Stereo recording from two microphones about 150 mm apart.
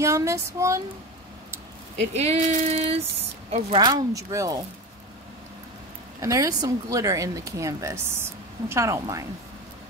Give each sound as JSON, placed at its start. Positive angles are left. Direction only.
{"t": 0.0, "sound": "speech", "side_deg": -20}
{"t": 2.0, "sound": "female singing", "side_deg": -45}
{"t": 3.7, "sound": "speech", "side_deg": -30}
{"t": 6.2, "sound": "speech", "side_deg": -20}